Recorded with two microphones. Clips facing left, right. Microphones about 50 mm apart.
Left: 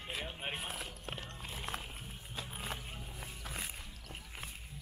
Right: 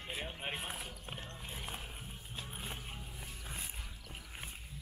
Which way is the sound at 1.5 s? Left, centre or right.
Left.